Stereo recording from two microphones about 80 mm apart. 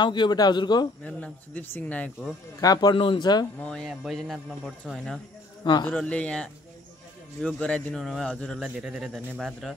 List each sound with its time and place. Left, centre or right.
0.0 s speech: left
1.0 s speech: centre
2.6 s speech: left
3.6 s speech: centre
5.6 s a man's voice: left
6.0 s speech: centre
8.8 s speech: centre